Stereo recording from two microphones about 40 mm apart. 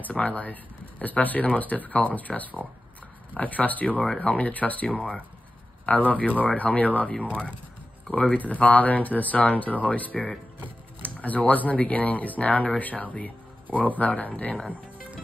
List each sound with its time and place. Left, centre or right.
0.0 s speech: left
4.8 s speech: left
5.9 s speech: left
7.1 s speech: left
8.4 s speech: left
11.1 s speech: left